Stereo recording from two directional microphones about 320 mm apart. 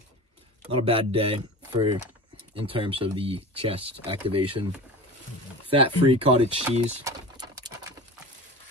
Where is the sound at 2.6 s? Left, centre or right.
Centre.